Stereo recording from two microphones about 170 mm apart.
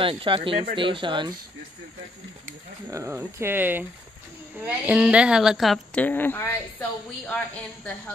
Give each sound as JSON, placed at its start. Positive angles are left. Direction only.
{"t": 0.0, "sound": "speech", "side_deg": -30}
{"t": 2.9, "sound": "a woman's voice", "side_deg": -15}